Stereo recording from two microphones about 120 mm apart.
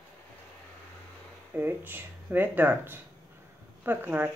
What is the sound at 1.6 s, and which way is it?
Speech, 15° right (ahead or behind).